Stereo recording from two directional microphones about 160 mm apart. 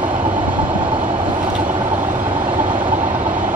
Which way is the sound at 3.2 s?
55° right (ahead or behind).